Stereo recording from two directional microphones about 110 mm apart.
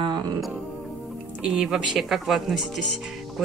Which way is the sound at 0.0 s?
40° right (ahead or behind).